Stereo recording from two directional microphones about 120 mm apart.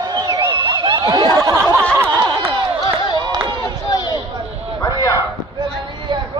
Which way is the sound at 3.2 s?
35° right (ahead or behind).